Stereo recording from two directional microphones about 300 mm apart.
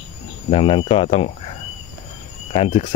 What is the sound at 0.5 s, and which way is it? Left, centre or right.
Speech, centre.